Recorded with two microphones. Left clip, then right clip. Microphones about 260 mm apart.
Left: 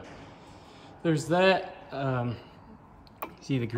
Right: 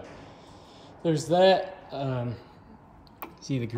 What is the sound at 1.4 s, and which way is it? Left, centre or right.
A man's voice, centre.